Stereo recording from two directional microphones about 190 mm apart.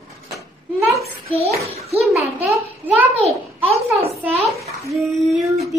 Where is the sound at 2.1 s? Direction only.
Centre (ahead or behind).